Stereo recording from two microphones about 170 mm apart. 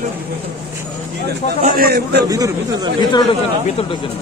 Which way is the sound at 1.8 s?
65° right (ahead or behind).